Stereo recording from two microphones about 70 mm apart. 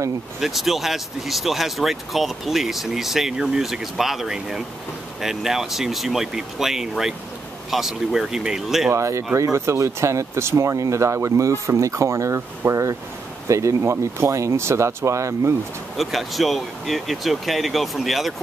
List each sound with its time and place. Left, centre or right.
0.4 s speech: centre
8.9 s speech: right
16.0 s speech: centre